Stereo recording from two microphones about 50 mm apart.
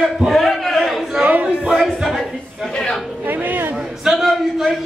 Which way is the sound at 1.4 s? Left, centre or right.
Centre.